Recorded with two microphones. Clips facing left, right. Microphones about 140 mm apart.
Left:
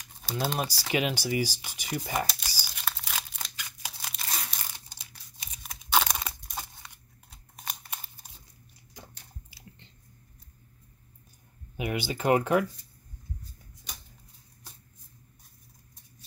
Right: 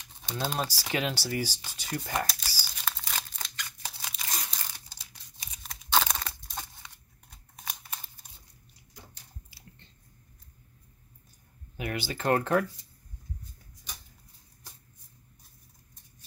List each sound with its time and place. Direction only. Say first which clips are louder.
0.2 s speech: left 2 dB; 5° left (ahead or behind)
0.6 s speech: left 1 dB; 15° left (ahead or behind)
2.4 s crumpling: even; 15° left (ahead or behind)
2.8 s crumpling: even; 5° left (ahead or behind)
5.6 s a sound: left 1 dB; 5° left (ahead or behind)
7.2 s scissors: left 1 dB; centre (ahead or behind)
11.7 s speech: left 3 dB; 15° left (ahead or behind)